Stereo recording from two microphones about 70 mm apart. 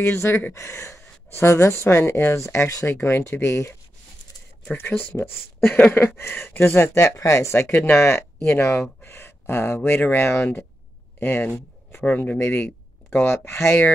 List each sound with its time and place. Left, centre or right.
0.0 s speech: left
4.7 s speech: left
6.8 s speech: left